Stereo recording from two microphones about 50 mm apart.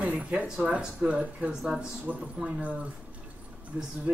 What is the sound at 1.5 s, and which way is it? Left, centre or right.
Speech, centre.